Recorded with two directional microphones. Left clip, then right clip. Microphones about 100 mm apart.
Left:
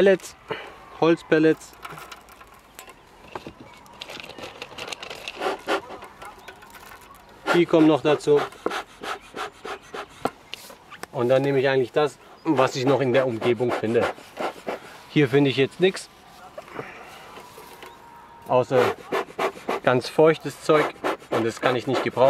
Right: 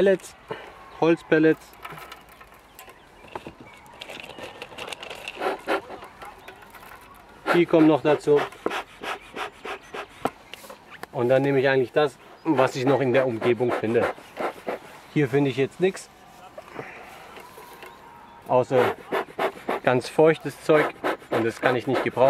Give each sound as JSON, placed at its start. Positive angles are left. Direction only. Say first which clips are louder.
{"t": 0.0, "sound": "speech", "louder": "left 2 dB", "side_deg": 30}
{"t": 0.9, "sound": "speech", "louder": "left 1 dB", "side_deg": 20}
{"t": 4.0, "sound": "a sound", "louder": "left 1 dB", "side_deg": 45}
{"t": 5.4, "sound": "zipper", "louder": "even", "side_deg": 15}
{"t": 7.4, "sound": "speech", "louder": "even", "side_deg": 15}
{"t": 8.5, "sound": "rub", "louder": "even", "side_deg": 10}
{"t": 10.5, "sound": "fowl", "louder": "left 2 dB", "side_deg": 15}
{"t": 11.5, "sound": "speech", "louder": "even", "side_deg": 5}
{"t": 11.9, "sound": "speech", "louder": "even", "side_deg": 15}
{"t": 15.1, "sound": "speech", "louder": "left 3 dB", "side_deg": 65}
{"t": 16.7, "sound": "a sound", "louder": "left 1 dB", "side_deg": 15}
{"t": 18.5, "sound": "rub", "louder": "left 1 dB", "side_deg": 15}
{"t": 20.6, "sound": "speech", "louder": "even", "side_deg": 5}